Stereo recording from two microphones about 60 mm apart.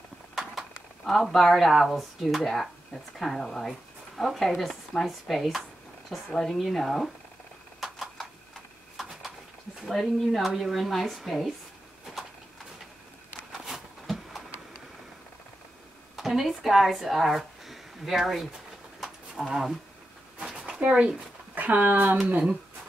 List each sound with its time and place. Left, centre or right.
0.4 s speech: centre
7.8 s a sound: centre
9.8 s speech: centre
13.5 s a sound: centre
16.2 s speech: centre
18.9 s livestock: centre
19.5 s speech: centre
20.4 s a sound: centre
20.8 s speech: right